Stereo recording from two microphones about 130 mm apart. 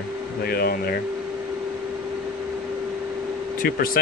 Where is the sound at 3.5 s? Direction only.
90° left.